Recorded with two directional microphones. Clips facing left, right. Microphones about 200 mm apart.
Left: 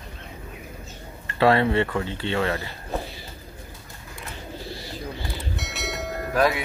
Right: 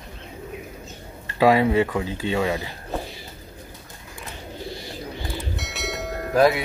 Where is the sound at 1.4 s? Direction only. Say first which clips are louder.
Right 2 dB; 10° right (ahead or behind).